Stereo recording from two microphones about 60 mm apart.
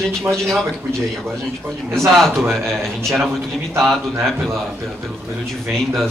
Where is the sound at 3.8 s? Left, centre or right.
Centre.